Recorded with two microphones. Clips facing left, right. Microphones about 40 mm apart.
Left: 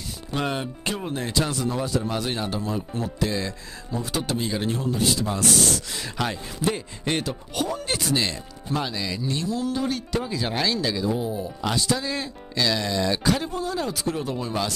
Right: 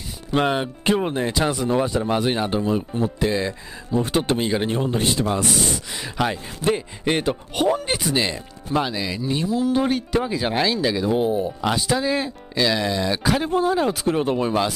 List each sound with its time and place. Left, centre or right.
0.3 s speech: right
1.2 s speech: centre
1.7 s speech: right
4.0 s speech: right
5.3 s speech: centre
7.2 s speech: right
7.7 s speech: right
11.1 s speech: right
11.6 s speech: centre
13.5 s speech: right